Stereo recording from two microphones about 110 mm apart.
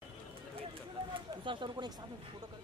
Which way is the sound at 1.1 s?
50° right (ahead or behind).